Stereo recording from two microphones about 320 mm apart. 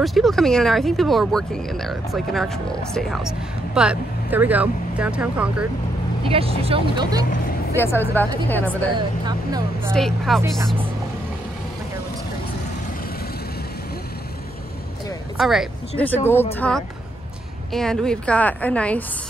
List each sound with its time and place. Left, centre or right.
0.0 s speech: centre
6.3 s speech: centre
7.7 s speech: centre
8.6 s speech: centre
9.9 s speech: centre
15.3 s speech: centre